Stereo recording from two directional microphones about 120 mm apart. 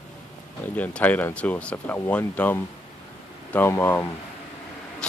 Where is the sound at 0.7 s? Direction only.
15° left (ahead or behind).